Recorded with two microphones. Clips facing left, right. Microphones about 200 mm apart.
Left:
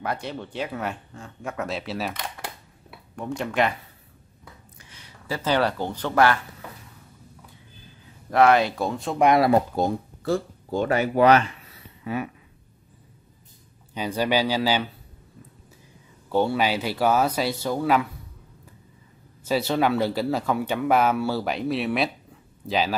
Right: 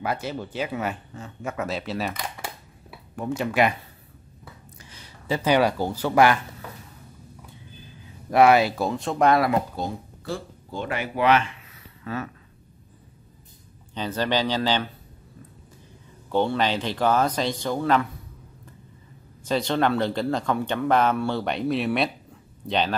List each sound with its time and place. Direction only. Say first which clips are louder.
0.0 s speech: right 2 dB; 5° right (ahead or behind)
5.3 s speech: right 3 dB; 15° right (ahead or behind)
8.3 s speech: right 1 dB; 10° right (ahead or behind)
9.2 s speech: left 1 dB; 20° left (ahead or behind)
9.5 s speech: left 5 dB; 50° left (ahead or behind)
12.0 s speech: left 2 dB; 15° left (ahead or behind)
13.9 s speech: left 2 dB; 10° left (ahead or behind)
16.3 s speech: left 1 dB; 10° left (ahead or behind)
19.4 s speech: even; 5° left (ahead or behind)